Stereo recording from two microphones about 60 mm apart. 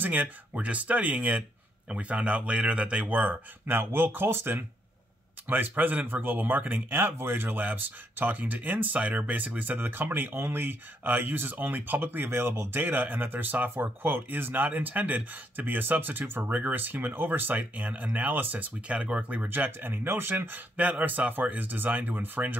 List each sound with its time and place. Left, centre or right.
0.0 s speech: right
19.4 s speech: right